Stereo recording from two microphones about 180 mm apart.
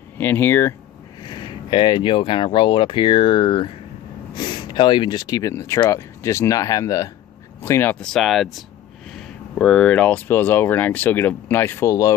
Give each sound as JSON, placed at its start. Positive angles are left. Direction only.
{"t": 0.2, "sound": "speech", "side_deg": 10}
{"t": 1.2, "sound": "speech", "side_deg": 25}